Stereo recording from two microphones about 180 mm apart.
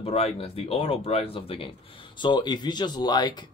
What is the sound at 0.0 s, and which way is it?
Speech, 35° left (ahead or behind).